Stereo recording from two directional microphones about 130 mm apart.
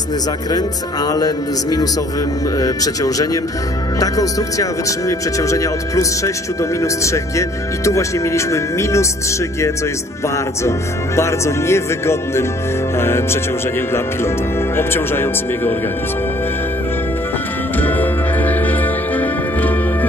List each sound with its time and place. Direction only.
0.5 s speech: 30° left (ahead or behind)
10.2 s speech: 20° left (ahead or behind)
17.7 s music: 15° left (ahead or behind)